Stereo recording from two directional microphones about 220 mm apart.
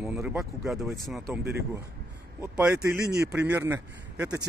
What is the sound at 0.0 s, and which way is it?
Speech, 10° right (ahead or behind).